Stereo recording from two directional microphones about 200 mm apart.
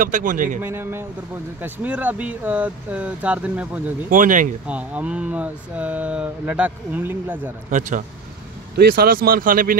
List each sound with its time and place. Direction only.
0.0 s a man's voice: 40° right (ahead or behind)
0.6 s speech: 10° right (ahead or behind)
4.1 s a man's voice: 40° right (ahead or behind)
4.6 s speech: 5° right (ahead or behind)
8.7 s speech: 50° right (ahead or behind)